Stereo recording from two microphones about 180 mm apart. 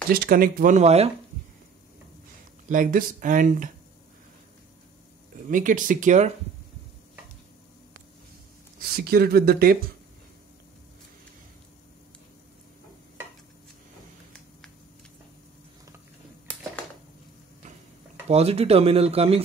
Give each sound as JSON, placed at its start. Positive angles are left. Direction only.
{"t": 0.1, "sound": "speech", "side_deg": -55}
{"t": 2.7, "sound": "speech", "side_deg": -45}
{"t": 5.5, "sound": "speech", "side_deg": -45}
{"t": 8.7, "sound": "speech", "side_deg": -55}
{"t": 18.3, "sound": "speech", "side_deg": -35}